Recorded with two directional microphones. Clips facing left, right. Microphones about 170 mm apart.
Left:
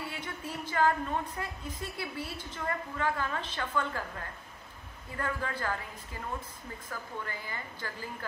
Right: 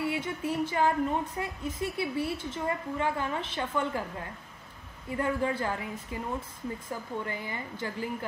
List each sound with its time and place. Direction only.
0.1 s a woman's voice: 25° right (ahead or behind)